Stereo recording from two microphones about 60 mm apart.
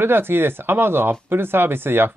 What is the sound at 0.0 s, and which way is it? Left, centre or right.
Speech, right.